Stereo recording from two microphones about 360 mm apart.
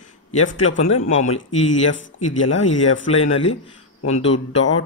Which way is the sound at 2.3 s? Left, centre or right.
Left.